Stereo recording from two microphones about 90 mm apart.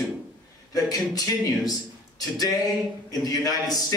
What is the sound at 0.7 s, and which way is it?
Speech, 45° left (ahead or behind).